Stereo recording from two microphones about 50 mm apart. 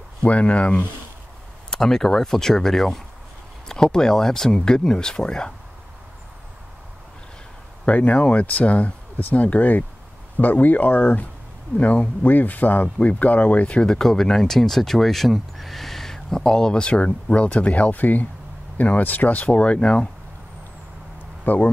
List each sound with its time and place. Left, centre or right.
0.2 s speech: left
1.7 s speech: centre
7.8 s speech: left
21.5 s speech: left